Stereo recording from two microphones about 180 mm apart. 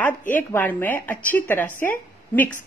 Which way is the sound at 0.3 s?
10° left (ahead or behind).